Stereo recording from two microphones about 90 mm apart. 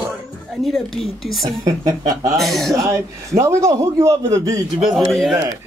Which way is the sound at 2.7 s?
35° right (ahead or behind).